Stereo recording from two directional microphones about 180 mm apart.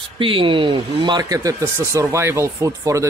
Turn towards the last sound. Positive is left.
turn(degrees=-15)  # may be behind; listen again after turning